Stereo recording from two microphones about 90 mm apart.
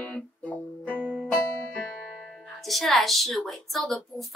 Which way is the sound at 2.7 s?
Centre (ahead or behind).